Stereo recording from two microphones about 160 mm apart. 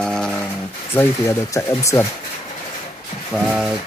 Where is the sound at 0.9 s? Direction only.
15° left (ahead or behind).